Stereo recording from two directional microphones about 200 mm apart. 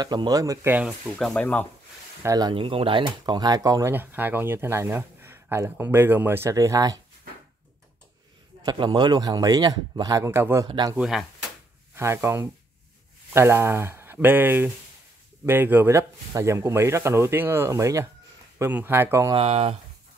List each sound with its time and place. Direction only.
0.0 s speech: 20° right (ahead or behind); by 1.7 s 5° left (ahead or behind)
2.2 s speech: 20° right (ahead or behind)
8.6 s speech: 20° right (ahead or behind)
11.0 s speech: centre (ahead or behind)
11.9 s speech: 15° right (ahead or behind)
19.3 s speech: 30° right (ahead or behind)